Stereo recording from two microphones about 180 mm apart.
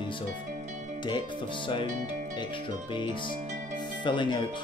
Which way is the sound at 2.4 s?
25° left (ahead or behind).